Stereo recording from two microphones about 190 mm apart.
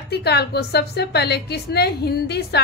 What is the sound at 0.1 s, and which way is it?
A woman's voice, 60° left (ahead or behind).